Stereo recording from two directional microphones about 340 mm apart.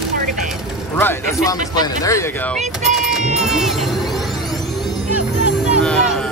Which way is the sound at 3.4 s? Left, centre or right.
Centre.